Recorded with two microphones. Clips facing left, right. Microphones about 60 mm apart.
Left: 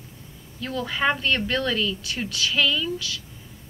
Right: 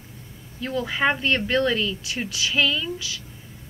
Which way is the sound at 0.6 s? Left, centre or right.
Centre.